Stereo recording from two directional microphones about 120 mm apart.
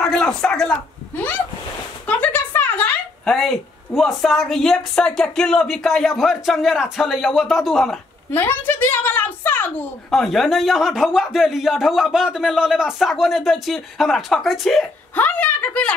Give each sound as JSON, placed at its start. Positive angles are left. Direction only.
{"t": 0.0, "sound": "a man's voice", "side_deg": 5}
{"t": 2.0, "sound": "a sound", "side_deg": 15}
{"t": 3.3, "sound": "speech", "side_deg": 0}
{"t": 8.3, "sound": "speech", "side_deg": 15}
{"t": 10.1, "sound": "speech", "side_deg": 0}
{"t": 15.1, "sound": "a sound", "side_deg": 15}